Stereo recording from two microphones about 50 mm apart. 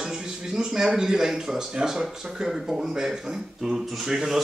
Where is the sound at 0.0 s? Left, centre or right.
Centre.